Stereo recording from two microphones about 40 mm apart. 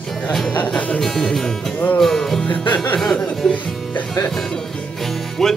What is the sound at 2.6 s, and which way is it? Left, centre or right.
Music, left.